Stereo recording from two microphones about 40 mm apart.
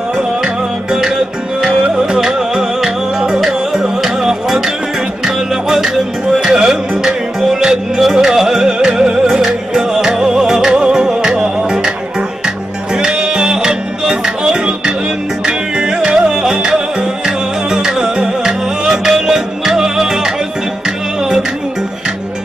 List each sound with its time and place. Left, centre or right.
0.9 s music: centre
12.9 s music: centre